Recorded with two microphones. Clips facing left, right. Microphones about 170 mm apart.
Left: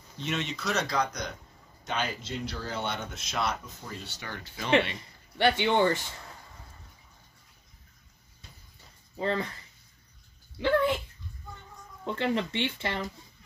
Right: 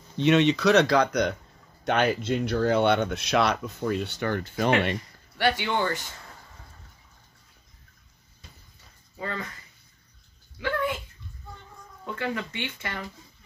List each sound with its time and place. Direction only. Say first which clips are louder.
0.2 s speech: right 13 dB; 70° right (ahead or behind); by 4.7 s 50° right (ahead or behind)
5.4 s speech: left 2 dB; 25° left (ahead or behind)
9.1 s speech: left 4 dB; 30° left (ahead or behind)
10.6 s speech: left 3 dB; 30° left (ahead or behind)
12.0 s speech: left 2 dB; 25° left (ahead or behind)